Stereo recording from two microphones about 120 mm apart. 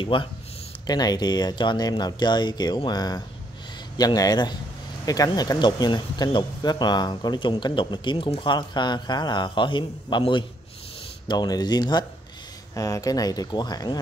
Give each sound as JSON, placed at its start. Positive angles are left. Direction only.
{"t": 0.0, "sound": "speech", "side_deg": 45}
{"t": 0.8, "sound": "speech", "side_deg": 35}